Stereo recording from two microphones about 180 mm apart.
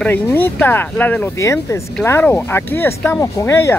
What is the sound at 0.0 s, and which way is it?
Speech, 10° left (ahead or behind).